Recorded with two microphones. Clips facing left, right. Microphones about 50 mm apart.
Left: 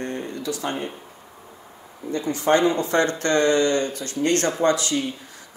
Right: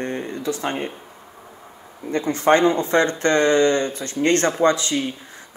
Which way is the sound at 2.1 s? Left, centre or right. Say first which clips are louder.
Right 3 dB; right.